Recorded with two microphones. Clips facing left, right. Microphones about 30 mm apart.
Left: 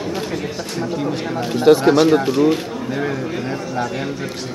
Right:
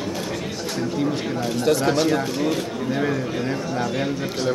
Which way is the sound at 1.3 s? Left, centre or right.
Left.